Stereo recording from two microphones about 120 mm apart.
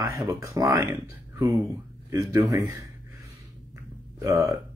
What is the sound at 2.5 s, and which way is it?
Speech, 25° right (ahead or behind).